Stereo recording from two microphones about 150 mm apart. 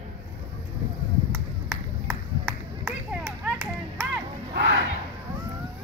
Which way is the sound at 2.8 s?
15° right (ahead or behind).